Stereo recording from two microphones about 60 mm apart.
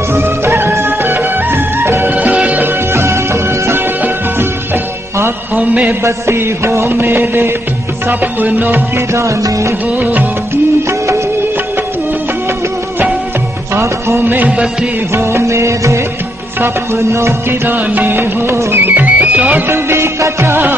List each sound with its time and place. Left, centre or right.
0.1 s music: right
2.1 s music: right
2.9 s music: right
5.9 s music: right
6.9 s a sound: right
8.1 s music: right
9.1 s music: right
9.9 s music of bollywood: right
13.7 s music of bollywood: right
14.2 s a sound: right
15.1 s music: right
17.6 s music: right
19.7 s music of bollywood: right